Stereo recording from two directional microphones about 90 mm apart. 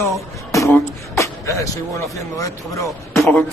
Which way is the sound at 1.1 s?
35° left (ahead or behind).